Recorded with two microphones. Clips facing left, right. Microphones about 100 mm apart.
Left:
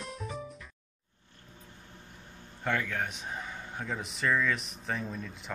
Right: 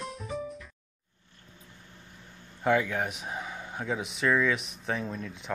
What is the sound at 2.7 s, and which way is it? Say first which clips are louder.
Speech: right 6 dB; 10° right (ahead or behind).